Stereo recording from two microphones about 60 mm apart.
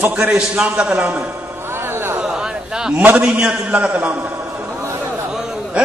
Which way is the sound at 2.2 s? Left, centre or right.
Centre.